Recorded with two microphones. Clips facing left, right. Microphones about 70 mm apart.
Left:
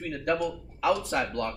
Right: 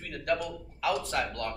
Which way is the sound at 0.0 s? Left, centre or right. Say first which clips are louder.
Left 3 dB; centre.